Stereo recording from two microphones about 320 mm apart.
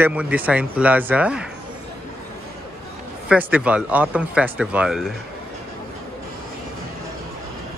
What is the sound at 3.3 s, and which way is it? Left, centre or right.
Speech, centre.